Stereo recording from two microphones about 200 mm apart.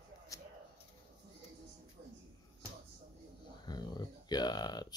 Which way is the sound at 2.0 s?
50° right (ahead or behind).